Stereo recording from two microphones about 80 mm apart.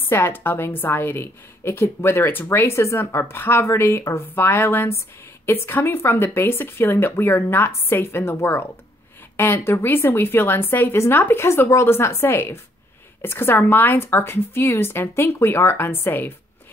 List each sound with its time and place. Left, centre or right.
0.0 s a woman's voice: left